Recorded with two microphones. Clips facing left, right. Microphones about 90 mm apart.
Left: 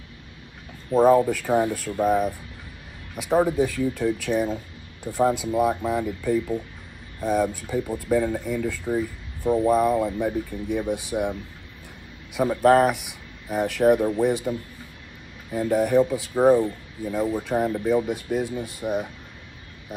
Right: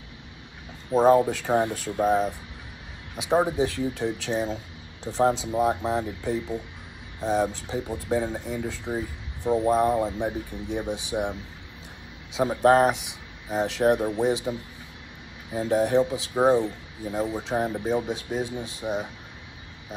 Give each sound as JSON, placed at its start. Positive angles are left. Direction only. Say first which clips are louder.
{"t": 0.9, "sound": "speech", "louder": "left 1 dB", "side_deg": -20}
{"t": 12.4, "sound": "a man's voice", "louder": "left 1 dB", "side_deg": -20}